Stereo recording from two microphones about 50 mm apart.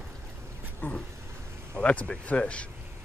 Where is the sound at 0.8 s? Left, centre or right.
Left.